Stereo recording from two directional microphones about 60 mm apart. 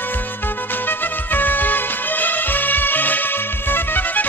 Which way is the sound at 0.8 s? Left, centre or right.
Left.